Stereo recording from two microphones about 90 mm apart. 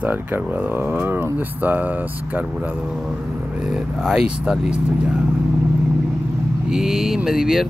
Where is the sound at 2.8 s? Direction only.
5° right (ahead or behind).